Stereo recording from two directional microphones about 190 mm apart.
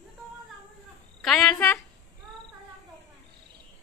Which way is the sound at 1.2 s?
Centre (ahead or behind).